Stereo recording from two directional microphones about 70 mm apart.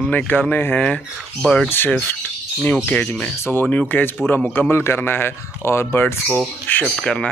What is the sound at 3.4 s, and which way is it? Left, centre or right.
A man's voice, left.